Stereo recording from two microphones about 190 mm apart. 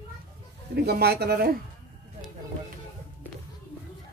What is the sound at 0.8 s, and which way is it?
Speech, 55° right (ahead or behind).